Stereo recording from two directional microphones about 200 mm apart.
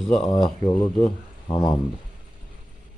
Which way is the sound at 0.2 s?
25° left (ahead or behind).